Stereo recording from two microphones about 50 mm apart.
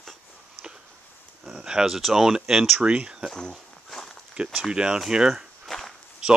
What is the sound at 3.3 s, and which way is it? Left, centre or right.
Walk, centre.